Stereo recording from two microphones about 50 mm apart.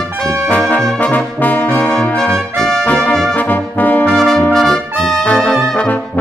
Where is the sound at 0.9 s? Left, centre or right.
Left.